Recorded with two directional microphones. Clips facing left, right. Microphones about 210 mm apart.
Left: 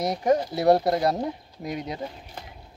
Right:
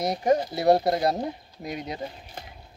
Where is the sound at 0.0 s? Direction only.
25° right (ahead or behind).